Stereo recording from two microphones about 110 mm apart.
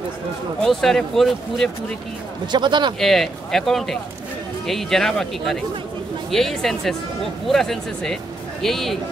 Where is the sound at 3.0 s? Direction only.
5° left (ahead or behind).